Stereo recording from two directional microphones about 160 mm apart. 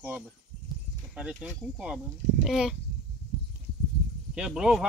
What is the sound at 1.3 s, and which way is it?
Speech, 5° right (ahead or behind).